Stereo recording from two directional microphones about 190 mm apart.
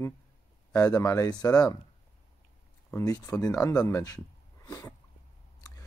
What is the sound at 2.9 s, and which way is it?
Speech, 15° left (ahead or behind).